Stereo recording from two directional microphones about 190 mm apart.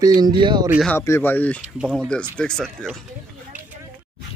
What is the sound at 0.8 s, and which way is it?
Speech, 15° left (ahead or behind).